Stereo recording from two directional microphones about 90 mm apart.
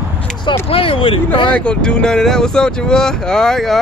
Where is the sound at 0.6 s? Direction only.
90° left.